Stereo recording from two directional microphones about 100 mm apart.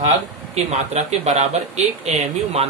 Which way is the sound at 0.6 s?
90° right.